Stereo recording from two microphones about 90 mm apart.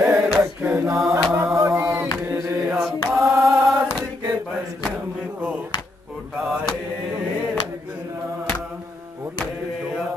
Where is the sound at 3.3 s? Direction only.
35° right (ahead or behind).